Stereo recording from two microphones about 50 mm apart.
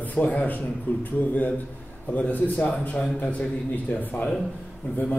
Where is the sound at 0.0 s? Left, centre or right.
Left.